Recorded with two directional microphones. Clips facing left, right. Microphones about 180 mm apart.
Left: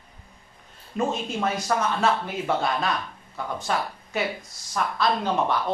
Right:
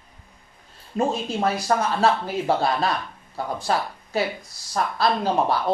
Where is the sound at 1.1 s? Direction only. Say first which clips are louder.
Right 3 dB; 35° right (ahead or behind).